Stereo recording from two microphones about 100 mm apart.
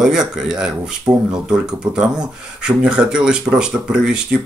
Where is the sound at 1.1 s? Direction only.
15° right (ahead or behind).